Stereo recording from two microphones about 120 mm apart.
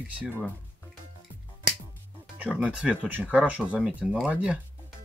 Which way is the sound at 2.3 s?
10° right (ahead or behind).